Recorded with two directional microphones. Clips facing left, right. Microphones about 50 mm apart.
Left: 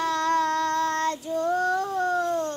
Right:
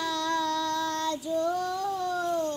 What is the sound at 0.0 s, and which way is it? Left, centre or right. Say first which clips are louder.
Child singing: left 5 dB; left.